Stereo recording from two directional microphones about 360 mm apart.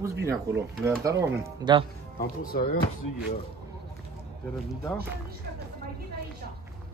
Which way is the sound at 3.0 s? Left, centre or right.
Left.